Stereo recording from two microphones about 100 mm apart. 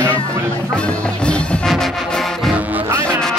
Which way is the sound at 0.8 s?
10° left (ahead or behind).